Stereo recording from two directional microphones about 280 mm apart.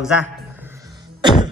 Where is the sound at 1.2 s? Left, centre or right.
Centre.